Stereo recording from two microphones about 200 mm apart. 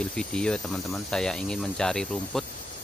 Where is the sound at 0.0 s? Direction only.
5° left (ahead or behind).